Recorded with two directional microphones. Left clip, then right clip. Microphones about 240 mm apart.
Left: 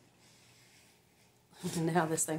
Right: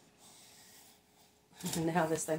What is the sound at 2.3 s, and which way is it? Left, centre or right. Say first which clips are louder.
Speech: right 2 dB; left.